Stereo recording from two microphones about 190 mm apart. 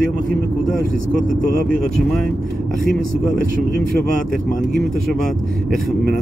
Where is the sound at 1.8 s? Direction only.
Centre (ahead or behind).